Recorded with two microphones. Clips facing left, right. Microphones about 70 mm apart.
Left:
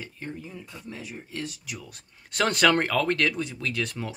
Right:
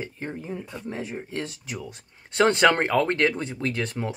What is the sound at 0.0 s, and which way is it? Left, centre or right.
Speech, right.